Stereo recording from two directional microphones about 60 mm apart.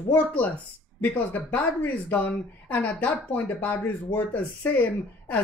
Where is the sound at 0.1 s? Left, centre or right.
Left.